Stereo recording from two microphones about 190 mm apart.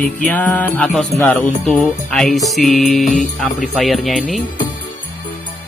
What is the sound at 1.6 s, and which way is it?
Speech, centre (ahead or behind).